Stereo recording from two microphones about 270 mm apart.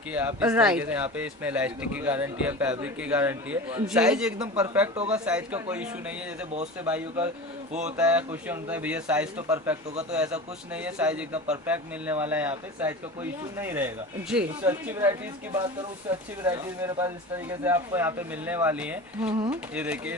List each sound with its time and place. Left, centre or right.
0.1 s a man's voice: centre